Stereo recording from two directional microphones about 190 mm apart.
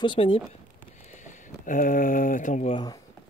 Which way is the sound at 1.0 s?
40° left (ahead or behind).